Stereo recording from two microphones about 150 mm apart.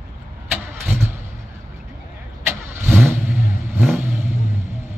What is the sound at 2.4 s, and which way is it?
Vehicle, 10° right (ahead or behind).